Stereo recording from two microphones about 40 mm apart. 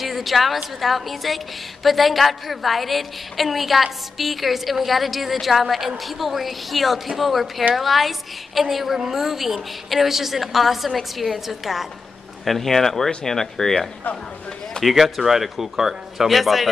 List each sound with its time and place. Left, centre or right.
0.0 s a woman's voice: centre
12.4 s a woman's voice: centre